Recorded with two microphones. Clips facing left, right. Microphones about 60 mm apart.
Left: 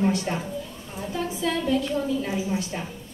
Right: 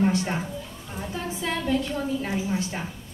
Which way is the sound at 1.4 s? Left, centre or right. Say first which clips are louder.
Left 1 dB; right.